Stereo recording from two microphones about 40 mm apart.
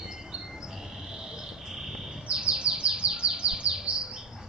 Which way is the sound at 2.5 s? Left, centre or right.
Right.